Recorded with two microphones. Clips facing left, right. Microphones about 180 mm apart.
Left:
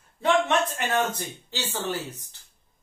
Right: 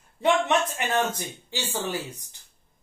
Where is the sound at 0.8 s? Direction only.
10° right (ahead or behind).